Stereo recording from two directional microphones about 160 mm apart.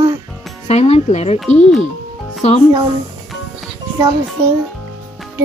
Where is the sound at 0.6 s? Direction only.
45° left (ahead or behind).